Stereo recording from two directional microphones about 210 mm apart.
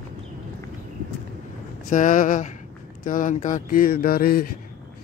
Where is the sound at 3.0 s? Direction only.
40° left (ahead or behind).